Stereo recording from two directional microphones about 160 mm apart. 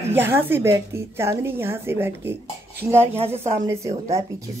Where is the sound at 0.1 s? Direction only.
15° right (ahead or behind).